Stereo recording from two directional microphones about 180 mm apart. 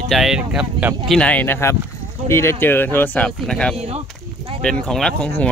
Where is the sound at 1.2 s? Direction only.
10° left (ahead or behind).